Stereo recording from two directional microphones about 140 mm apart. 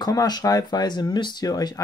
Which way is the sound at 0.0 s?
30° left (ahead or behind).